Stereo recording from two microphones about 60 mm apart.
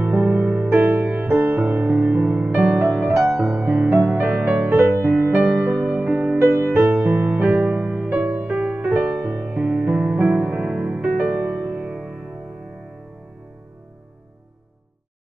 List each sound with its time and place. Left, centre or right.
0.2 s music: centre
0.7 s music: right
1.5 s music: centre
4.6 s music: right
5.4 s music: centre
6.3 s music: right
7.1 s music: right
9.0 s music: centre